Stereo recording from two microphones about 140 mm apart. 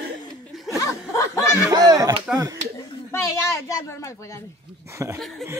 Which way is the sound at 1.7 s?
25° right (ahead or behind).